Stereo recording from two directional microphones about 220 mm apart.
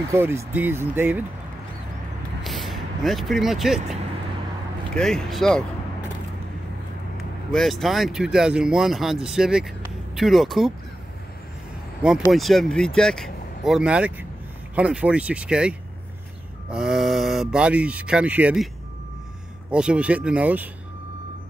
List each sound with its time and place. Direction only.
0.1 s speech: 10° right (ahead or behind)
2.4 s speech: centre (ahead or behind)
7.2 s speech: centre (ahead or behind)
12.2 s speech: centre (ahead or behind)
16.7 s speech: centre (ahead or behind)
19.7 s speech: 5° right (ahead or behind)